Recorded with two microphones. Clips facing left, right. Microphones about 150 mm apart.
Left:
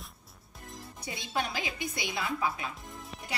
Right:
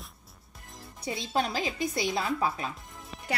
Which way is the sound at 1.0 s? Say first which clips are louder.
Right 5 dB; 30° right (ahead or behind).